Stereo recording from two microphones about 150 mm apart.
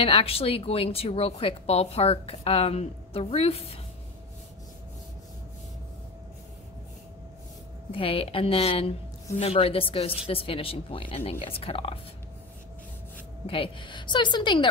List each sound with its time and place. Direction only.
0.0 s a woman's voice: 40° left (ahead or behind)
7.9 s a woman's voice: 35° left (ahead or behind)
13.5 s a woman's voice: 35° left (ahead or behind)